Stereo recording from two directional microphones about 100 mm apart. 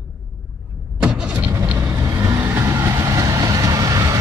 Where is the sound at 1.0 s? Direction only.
10° right (ahead or behind).